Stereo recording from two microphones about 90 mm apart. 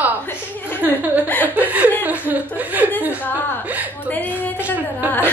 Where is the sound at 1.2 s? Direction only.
20° left (ahead or behind).